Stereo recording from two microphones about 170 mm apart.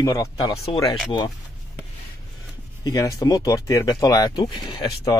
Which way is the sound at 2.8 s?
20° left (ahead or behind).